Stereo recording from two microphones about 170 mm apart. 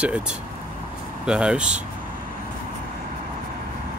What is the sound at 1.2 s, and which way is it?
Speech, 5° right (ahead or behind).